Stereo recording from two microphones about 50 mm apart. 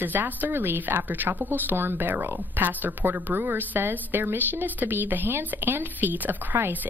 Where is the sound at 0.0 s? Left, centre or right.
Right.